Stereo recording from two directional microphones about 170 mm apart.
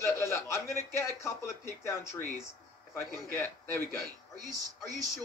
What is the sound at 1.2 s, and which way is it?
Speech, 15° left (ahead or behind).